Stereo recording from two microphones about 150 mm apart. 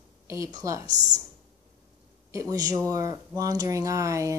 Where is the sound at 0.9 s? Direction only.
55° right (ahead or behind).